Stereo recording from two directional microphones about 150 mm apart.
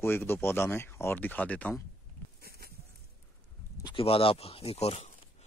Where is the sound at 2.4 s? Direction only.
90° right.